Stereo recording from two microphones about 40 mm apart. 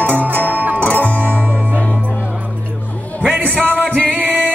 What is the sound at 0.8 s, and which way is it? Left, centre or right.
Music, left.